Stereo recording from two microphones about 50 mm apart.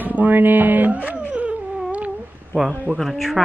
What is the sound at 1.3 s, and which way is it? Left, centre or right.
Cat, right.